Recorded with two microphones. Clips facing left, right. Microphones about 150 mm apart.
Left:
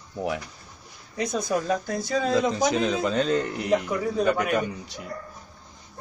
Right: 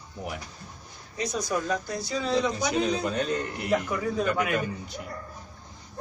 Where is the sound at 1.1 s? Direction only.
55° left (ahead or behind).